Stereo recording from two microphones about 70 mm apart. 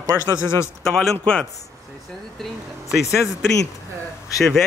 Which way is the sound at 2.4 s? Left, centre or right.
Centre.